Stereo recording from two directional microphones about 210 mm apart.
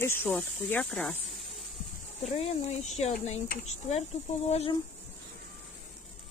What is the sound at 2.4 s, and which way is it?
Speech, 30° left (ahead or behind).